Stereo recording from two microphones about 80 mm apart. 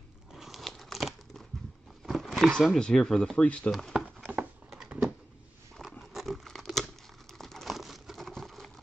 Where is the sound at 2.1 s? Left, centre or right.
Centre.